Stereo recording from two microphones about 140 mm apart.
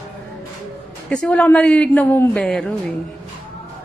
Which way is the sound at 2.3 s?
5° left (ahead or behind).